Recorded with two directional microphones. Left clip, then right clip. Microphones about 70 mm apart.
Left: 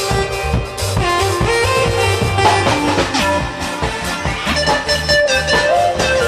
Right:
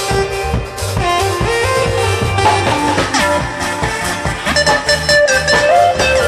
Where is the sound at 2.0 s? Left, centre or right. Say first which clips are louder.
Even; centre.